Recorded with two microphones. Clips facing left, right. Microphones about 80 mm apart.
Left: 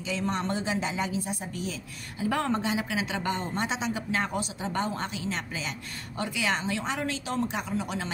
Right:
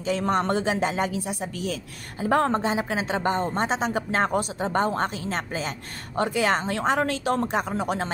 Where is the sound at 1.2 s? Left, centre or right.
Right.